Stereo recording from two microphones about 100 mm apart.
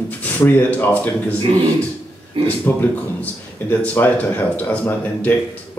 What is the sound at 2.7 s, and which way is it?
Speech, 20° left (ahead or behind).